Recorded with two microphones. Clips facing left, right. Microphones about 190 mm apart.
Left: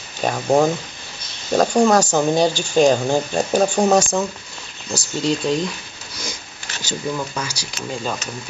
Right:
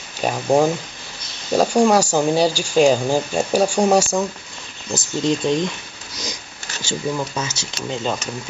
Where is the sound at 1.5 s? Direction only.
10° right (ahead or behind).